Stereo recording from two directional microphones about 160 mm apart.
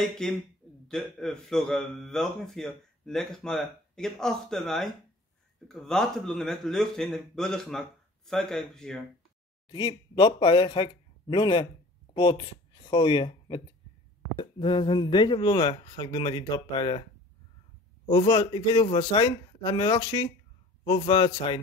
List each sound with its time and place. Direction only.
0.0 s a man's voice: 5° left (ahead or behind)
9.7 s speech: 30° left (ahead or behind)